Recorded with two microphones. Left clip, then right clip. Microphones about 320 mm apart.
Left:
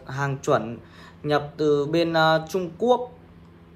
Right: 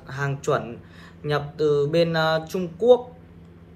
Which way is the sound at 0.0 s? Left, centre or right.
Centre.